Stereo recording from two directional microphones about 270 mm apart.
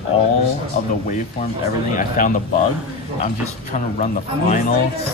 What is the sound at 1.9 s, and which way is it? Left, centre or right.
Speech, left.